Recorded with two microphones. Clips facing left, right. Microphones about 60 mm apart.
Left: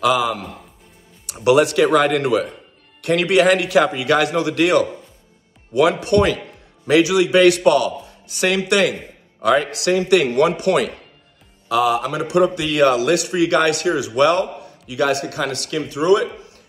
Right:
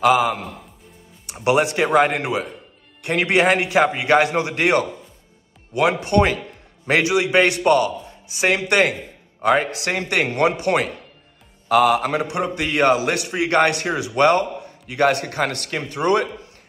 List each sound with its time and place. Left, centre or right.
0.0 s a man's voice: right
11.7 s speech: right
12.3 s a man's voice: right